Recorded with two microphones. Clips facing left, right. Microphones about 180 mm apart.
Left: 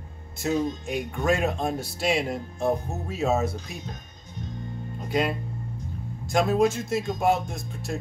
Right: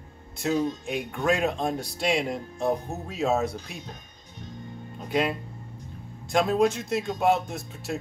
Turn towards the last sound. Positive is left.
turn(degrees=0)  # may be behind; listen again after turning